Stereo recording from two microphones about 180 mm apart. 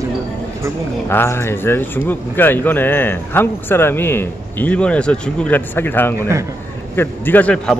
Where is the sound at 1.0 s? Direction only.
15° left (ahead or behind).